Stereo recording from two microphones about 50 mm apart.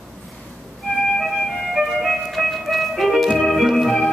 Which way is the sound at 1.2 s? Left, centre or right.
Centre.